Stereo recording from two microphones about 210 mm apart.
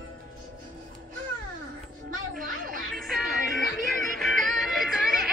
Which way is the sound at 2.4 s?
40° right (ahead or behind).